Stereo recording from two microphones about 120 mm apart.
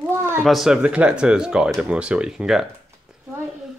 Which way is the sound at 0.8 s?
10° right (ahead or behind).